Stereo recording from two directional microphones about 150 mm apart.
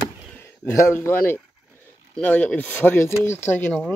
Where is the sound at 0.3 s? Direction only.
15° left (ahead or behind).